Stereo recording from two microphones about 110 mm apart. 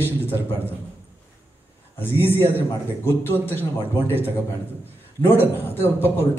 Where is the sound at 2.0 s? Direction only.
20° left (ahead or behind).